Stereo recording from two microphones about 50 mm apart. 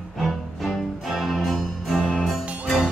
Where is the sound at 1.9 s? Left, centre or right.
Centre.